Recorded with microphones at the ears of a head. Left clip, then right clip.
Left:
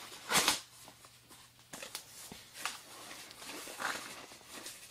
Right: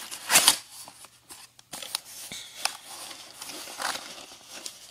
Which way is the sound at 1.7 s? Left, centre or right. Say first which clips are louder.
Right 10 dB; right.